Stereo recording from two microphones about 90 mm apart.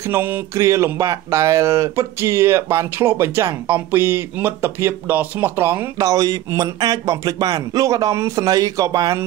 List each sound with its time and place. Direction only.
0.0 s speech: 25° right (ahead or behind)
5.9 s speech: 40° right (ahead or behind)